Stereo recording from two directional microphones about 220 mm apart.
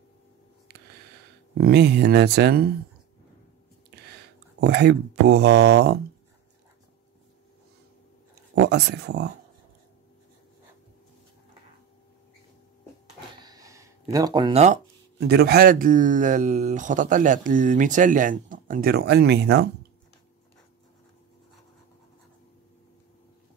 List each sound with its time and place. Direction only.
1.6 s speech: 50° right (ahead or behind)
4.6 s speech: 50° right (ahead or behind)
8.5 s speech: 50° right (ahead or behind)
13.4 s a sound: 15° right (ahead or behind)
14.1 s speech: 20° right (ahead or behind)
15.1 s speech: 45° right (ahead or behind)